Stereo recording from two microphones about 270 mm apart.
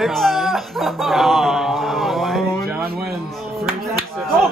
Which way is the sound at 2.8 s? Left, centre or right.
Right.